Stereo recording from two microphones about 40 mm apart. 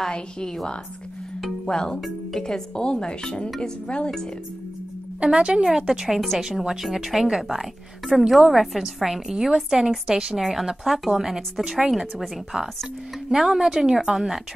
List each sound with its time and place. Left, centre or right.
1.7 s speech: centre
2.0 s speech: centre
2.4 s speech: centre
5.2 s speech: right
6.0 s a woman's voice: centre
12.5 s speech: right
13.3 s speech: centre